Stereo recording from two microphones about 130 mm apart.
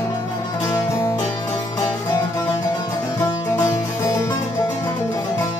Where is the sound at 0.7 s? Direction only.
25° left (ahead or behind).